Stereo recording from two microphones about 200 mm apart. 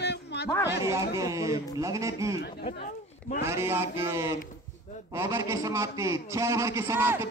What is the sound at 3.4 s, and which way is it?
A man's voice, 15° right (ahead or behind).